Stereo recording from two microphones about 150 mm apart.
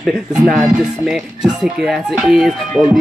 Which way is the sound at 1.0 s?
5° right (ahead or behind).